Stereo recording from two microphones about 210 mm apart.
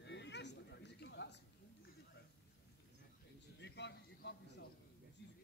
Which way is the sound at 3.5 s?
55° left (ahead or behind).